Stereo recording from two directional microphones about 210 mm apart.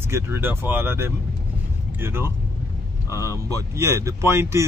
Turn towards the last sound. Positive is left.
turn(degrees=-15)  # may be behind; listen again after turning